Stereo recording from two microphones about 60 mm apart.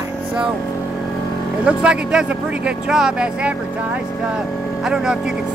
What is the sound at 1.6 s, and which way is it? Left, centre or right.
Speech, centre.